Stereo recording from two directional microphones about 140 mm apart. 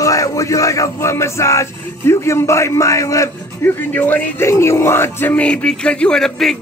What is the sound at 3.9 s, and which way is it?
Speech, 15° left (ahead or behind).